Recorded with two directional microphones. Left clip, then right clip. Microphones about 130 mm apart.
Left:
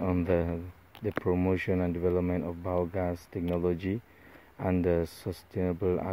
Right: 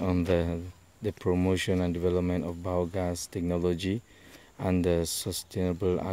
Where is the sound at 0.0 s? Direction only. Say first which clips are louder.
Right 1 dB; 15° right (ahead or behind).